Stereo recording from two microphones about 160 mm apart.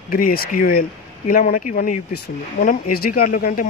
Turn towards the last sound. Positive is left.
turn(degrees=60)  # may be behind; listen again after turning